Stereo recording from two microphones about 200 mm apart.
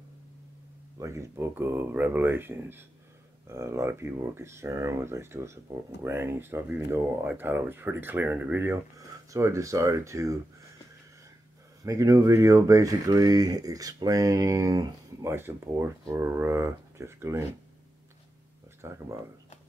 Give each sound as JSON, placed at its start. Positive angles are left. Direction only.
{"t": 0.9, "sound": "speech", "side_deg": -15}
{"t": 11.8, "sound": "speech", "side_deg": -15}
{"t": 18.8, "sound": "speech", "side_deg": -15}